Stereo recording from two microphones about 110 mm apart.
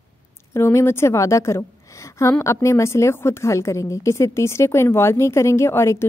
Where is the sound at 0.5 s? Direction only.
25° left (ahead or behind).